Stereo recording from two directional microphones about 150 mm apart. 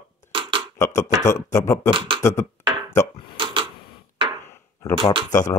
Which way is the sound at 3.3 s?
35° right (ahead or behind).